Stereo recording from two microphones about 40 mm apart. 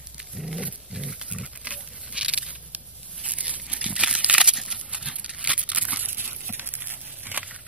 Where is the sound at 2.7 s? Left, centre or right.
Right.